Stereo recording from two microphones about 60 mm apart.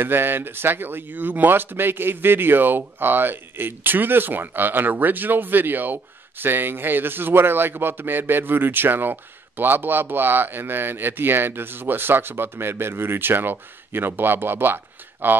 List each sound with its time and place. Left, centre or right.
0.0 s speech: right